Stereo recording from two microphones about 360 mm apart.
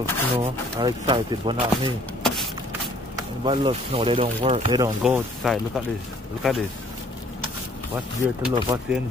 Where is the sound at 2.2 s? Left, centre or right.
Centre.